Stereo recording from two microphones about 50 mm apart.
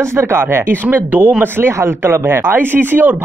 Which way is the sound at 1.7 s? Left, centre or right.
Right.